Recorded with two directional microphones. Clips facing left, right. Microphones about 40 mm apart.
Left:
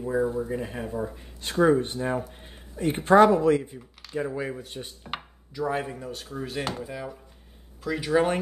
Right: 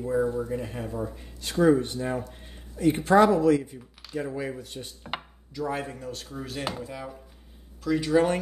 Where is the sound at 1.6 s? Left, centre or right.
Left.